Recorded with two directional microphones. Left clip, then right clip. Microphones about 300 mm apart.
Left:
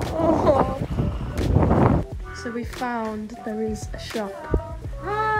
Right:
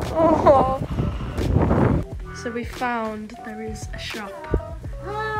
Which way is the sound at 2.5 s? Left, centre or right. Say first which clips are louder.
Right 3 dB; centre.